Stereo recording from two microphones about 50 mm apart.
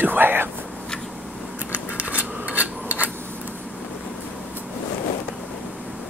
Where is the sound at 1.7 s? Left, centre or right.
Right.